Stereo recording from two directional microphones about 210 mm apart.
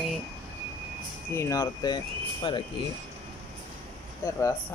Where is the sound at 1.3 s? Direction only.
15° left (ahead or behind).